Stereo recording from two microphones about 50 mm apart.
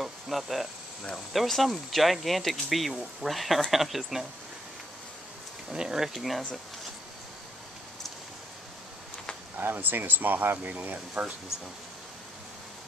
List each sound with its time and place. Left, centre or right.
0.0 s speech: centre
5.7 s speech: centre
9.6 s speech: right